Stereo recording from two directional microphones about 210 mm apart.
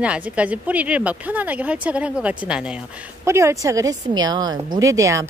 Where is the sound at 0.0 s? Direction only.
5° right (ahead or behind).